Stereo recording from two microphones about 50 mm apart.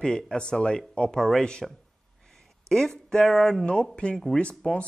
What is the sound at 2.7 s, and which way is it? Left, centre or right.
Speech, centre.